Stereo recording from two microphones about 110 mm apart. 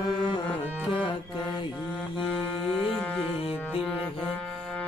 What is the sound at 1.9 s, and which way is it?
Music, 5° right (ahead or behind).